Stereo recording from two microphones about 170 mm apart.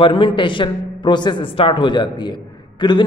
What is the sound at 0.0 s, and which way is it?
A man's voice, 30° left (ahead or behind).